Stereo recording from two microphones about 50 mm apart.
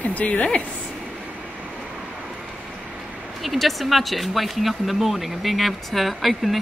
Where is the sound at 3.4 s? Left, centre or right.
Centre.